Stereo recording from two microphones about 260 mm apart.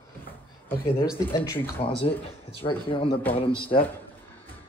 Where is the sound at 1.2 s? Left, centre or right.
Centre.